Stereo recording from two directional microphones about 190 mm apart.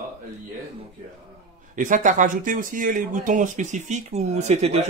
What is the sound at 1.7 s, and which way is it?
Speech, 45° right (ahead or behind).